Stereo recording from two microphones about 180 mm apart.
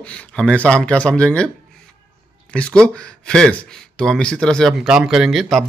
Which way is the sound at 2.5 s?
5° left (ahead or behind).